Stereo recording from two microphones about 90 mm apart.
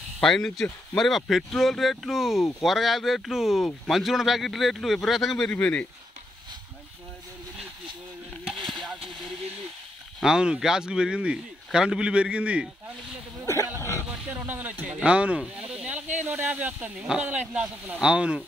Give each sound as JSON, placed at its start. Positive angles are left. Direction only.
{"t": 0.2, "sound": "speech", "side_deg": 5}
{"t": 5.5, "sound": "speech", "side_deg": 15}
{"t": 8.6, "sound": "a sound", "side_deg": 0}
{"t": 10.2, "sound": "a man's voice", "side_deg": -10}
{"t": 13.7, "sound": "a sound", "side_deg": 30}
{"t": 14.0, "sound": "a man's voice", "side_deg": -10}